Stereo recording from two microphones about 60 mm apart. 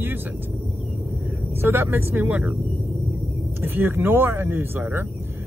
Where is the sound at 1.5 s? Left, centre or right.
Right.